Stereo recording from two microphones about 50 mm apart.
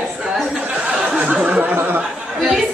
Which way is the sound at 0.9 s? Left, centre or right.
Centre.